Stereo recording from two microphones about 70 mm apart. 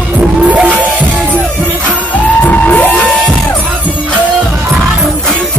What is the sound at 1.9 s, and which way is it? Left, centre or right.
Music, left.